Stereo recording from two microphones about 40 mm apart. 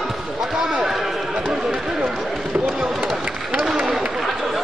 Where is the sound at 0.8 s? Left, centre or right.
Centre.